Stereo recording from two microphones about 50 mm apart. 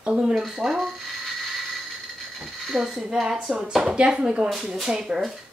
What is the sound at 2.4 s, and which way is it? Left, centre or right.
Speech, centre.